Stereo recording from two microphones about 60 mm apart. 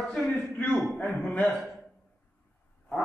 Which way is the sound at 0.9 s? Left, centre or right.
Left.